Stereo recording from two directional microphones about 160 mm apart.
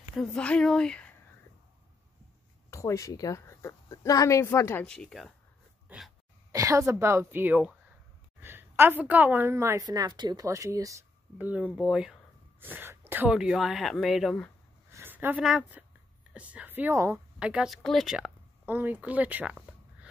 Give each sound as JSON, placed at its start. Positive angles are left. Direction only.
{"t": 0.2, "sound": "speech", "side_deg": 5}
{"t": 2.7, "sound": "a woman's voice", "side_deg": 20}
{"t": 4.8, "sound": "speech", "side_deg": 5}
{"t": 5.9, "sound": "a sound", "side_deg": 0}
{"t": 6.5, "sound": "a woman's voice", "side_deg": -20}
{"t": 14.9, "sound": "a sound", "side_deg": -15}
{"t": 16.3, "sound": "a woman's voice", "side_deg": -10}
{"t": 17.4, "sound": "speech", "side_deg": -5}